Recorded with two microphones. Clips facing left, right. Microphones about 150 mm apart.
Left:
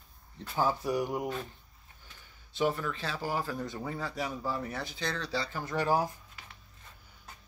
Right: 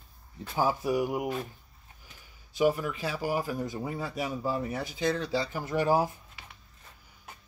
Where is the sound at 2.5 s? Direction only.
10° right (ahead or behind).